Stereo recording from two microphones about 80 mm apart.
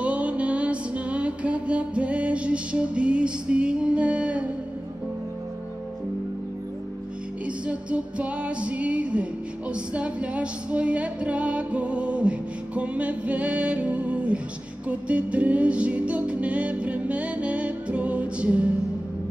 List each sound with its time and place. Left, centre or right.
0.0 s music: centre
7.4 s music: centre